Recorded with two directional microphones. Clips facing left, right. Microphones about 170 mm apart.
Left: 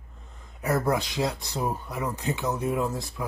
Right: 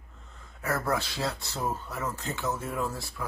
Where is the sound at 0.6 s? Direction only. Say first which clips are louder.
Left 4 dB; 15° left (ahead or behind).